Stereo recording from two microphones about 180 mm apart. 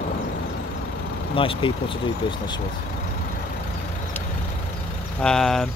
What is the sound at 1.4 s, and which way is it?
Speech, 30° left (ahead or behind).